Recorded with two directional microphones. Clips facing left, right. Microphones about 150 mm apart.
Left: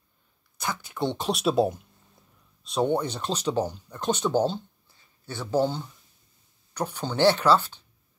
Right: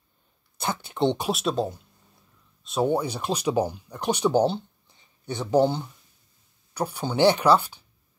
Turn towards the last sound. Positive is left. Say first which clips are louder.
# right 2 dB
turn(degrees=-15)  # may be behind; listen again after turning